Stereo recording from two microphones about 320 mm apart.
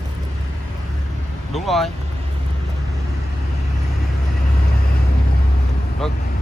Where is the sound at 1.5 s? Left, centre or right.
Centre.